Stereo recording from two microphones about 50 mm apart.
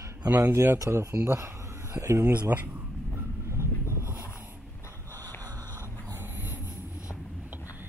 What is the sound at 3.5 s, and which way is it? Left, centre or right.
Vehicle, right.